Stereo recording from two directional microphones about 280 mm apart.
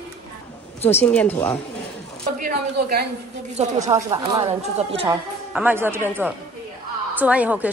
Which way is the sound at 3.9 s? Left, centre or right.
Centre.